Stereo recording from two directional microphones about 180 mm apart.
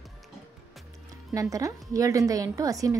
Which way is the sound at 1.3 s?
20° right (ahead or behind).